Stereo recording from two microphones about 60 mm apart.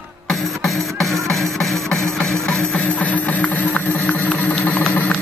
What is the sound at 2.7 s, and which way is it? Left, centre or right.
Music, left.